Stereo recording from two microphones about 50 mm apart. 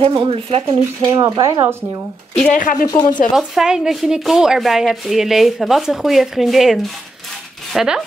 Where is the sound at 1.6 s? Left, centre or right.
Right.